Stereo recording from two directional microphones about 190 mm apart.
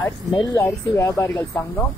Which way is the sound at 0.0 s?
15° left (ahead or behind).